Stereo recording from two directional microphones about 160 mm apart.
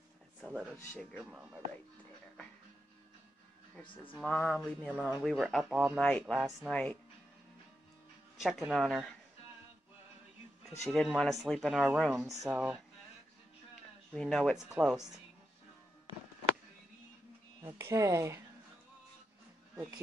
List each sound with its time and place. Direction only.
0.4 s speech: 5° right (ahead or behind)
4.2 s speech: 5° left (ahead or behind)
8.4 s speech: centre (ahead or behind)
10.8 s speech: centre (ahead or behind)
14.1 s speech: centre (ahead or behind)
17.6 s speech: 20° right (ahead or behind)